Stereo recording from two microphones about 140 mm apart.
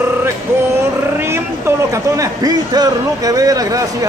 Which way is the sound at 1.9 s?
25° right (ahead or behind).